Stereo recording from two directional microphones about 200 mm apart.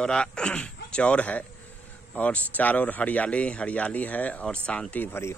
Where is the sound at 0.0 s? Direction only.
5° left (ahead or behind).